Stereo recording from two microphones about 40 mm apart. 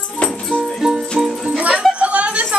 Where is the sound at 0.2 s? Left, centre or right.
Left.